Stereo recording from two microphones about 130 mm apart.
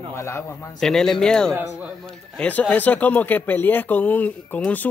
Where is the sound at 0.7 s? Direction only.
5° left (ahead or behind).